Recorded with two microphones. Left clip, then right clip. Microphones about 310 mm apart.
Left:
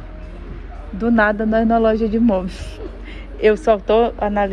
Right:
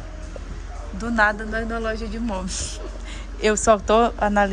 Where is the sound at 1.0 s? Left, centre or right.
Centre.